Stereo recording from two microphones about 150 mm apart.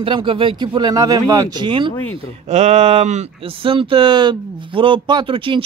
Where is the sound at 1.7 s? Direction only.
35° right (ahead or behind).